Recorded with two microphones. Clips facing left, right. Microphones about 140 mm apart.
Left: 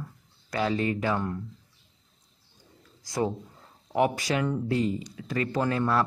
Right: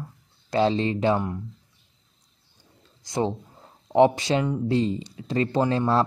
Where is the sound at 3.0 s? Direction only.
25° right (ahead or behind).